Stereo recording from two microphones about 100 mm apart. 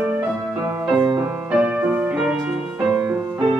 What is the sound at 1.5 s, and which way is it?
Music, 10° right (ahead or behind).